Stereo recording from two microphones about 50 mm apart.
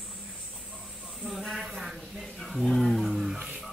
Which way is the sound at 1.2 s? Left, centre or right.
Centre.